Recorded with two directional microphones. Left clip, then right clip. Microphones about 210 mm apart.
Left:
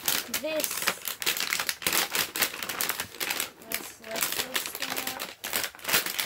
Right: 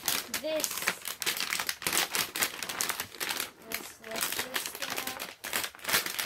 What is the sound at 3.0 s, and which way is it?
Typewriter, 10° left (ahead or behind).